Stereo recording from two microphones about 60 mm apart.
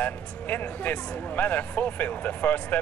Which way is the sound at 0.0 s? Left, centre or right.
Left.